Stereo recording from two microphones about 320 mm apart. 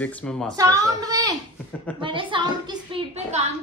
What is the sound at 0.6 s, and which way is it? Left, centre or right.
A woman's voice, centre.